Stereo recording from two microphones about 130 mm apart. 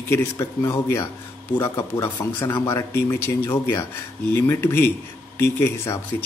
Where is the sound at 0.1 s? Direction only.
20° left (ahead or behind).